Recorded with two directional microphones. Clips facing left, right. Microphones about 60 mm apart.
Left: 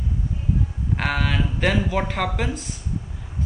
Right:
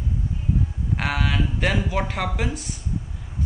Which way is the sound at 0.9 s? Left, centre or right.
Centre.